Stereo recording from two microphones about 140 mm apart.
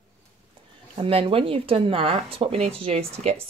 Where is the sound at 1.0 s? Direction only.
40° right (ahead or behind).